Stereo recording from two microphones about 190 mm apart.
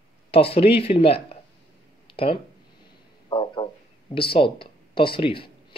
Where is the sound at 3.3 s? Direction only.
25° left (ahead or behind).